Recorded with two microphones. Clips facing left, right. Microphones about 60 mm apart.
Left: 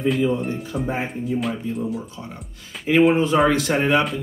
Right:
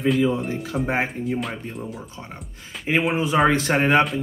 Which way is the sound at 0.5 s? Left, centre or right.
Right.